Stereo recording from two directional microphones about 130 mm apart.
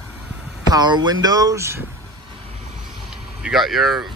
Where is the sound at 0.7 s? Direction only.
35° right (ahead or behind).